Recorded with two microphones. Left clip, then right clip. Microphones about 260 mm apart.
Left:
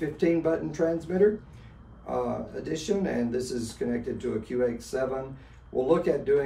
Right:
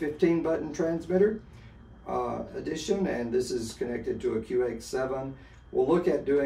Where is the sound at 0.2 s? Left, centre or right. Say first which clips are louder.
Left 1 dB; centre.